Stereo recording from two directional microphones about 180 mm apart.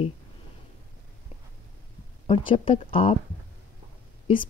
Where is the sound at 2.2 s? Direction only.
30° left (ahead or behind).